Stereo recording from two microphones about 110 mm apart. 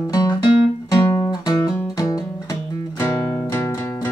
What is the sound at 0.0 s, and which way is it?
Guitar, 35° left (ahead or behind).